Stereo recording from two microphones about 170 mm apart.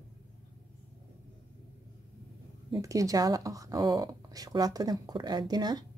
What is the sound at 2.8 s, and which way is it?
Speech, 20° right (ahead or behind).